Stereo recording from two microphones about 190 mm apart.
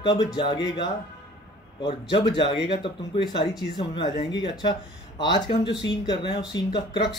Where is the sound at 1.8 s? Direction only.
25° left (ahead or behind).